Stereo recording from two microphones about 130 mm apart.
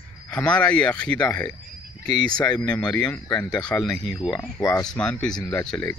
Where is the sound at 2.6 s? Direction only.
10° left (ahead or behind).